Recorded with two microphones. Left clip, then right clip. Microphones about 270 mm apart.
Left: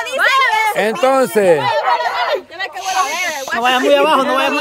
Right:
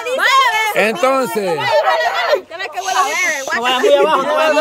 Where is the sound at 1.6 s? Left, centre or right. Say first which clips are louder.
Right 1 dB; right.